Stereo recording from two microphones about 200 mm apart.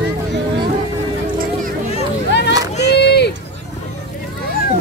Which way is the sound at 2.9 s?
55° left (ahead or behind).